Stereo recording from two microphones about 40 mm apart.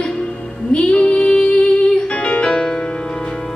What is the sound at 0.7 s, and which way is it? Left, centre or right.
Music, left.